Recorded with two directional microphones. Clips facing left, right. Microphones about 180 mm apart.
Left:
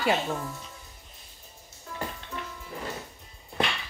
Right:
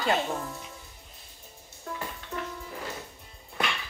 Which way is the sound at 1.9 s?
50° right (ahead or behind).